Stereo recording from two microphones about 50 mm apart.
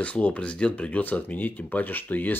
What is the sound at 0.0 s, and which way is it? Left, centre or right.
Speech, left.